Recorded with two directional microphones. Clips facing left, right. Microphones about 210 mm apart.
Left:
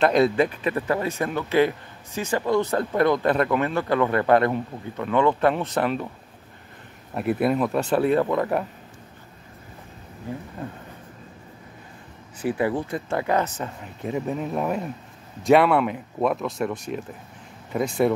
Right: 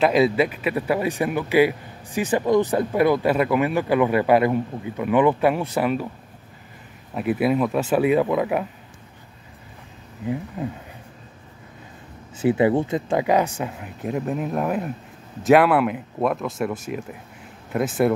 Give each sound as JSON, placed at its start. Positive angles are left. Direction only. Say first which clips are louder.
{"t": 0.0, "sound": "speech", "louder": "right 1 dB", "side_deg": -5}
{"t": 7.2, "sound": "speech", "louder": "right 1 dB", "side_deg": 0}
{"t": 12.4, "sound": "speech", "louder": "right 6 dB", "side_deg": -20}